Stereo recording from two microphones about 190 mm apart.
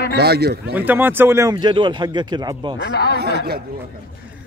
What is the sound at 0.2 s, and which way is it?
Speech, 55° right (ahead or behind).